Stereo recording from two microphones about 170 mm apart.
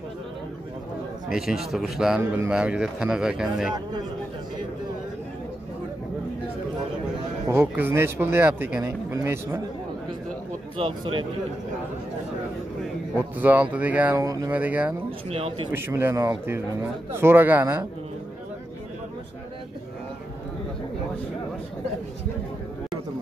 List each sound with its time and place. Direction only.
1.3 s speech: centre (ahead or behind)
7.4 s speech: 10° right (ahead or behind)
10.8 s speech: 30° right (ahead or behind)
13.4 s speech: 10° right (ahead or behind)
14.2 s speech: 20° right (ahead or behind)
15.0 s speech: 35° right (ahead or behind)
15.7 s speech: 15° right (ahead or behind)